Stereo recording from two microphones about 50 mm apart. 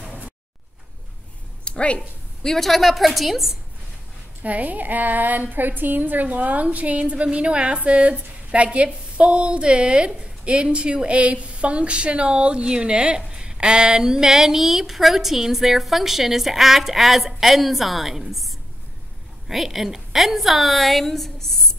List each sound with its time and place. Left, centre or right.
1.6 s a sound: left
2.0 s a woman's voice: centre
4.4 s a woman's voice: right; by 21.5 s centre